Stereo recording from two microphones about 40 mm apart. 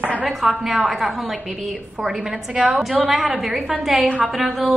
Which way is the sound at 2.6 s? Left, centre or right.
Centre.